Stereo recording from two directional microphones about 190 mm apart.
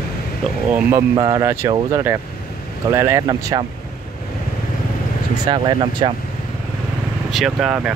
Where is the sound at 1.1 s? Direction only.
25° right (ahead or behind).